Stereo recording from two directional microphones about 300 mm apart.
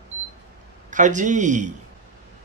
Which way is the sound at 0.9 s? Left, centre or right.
Right.